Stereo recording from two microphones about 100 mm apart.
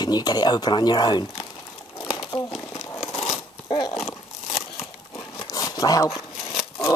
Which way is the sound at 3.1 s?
85° left.